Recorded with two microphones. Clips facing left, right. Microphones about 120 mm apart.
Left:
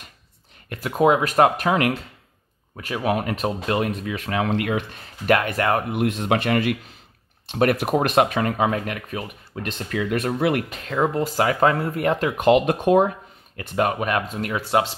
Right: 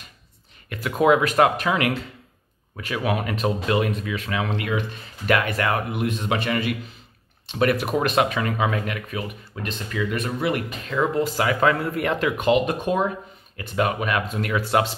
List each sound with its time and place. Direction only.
0.7 s speech: 40° left (ahead or behind)
5.9 s speech: 65° left (ahead or behind); by 9.2 s 40° left (ahead or behind)
9.6 s speech: 60° left (ahead or behind); by 10.6 s 80° left
10.9 s speech: 45° left (ahead or behind)
12.4 s speech: 65° left (ahead or behind)
13.6 s speech: 40° left (ahead or behind)